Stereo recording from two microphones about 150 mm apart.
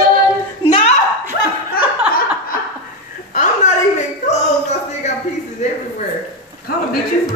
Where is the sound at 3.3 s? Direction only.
55° left (ahead or behind).